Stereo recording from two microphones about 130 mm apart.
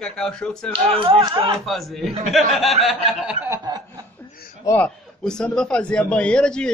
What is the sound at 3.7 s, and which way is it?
Chuckle, 30° right (ahead or behind).